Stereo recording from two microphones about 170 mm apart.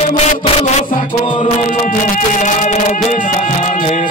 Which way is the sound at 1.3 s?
40° left (ahead or behind).